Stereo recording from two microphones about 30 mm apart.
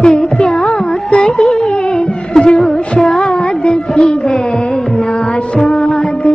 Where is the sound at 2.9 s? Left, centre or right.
Centre.